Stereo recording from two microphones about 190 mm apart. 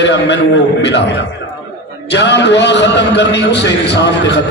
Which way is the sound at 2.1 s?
65° left (ahead or behind).